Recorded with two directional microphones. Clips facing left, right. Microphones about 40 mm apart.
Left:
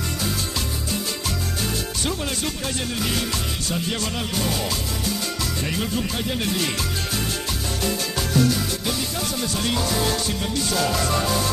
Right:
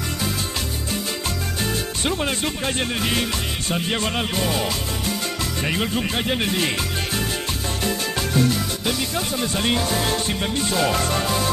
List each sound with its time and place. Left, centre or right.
2.0 s speech: right
8.8 s speech: right